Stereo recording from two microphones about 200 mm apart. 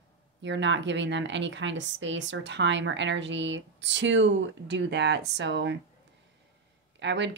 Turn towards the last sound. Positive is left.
turn(degrees=-60)  # may be behind; listen again after turning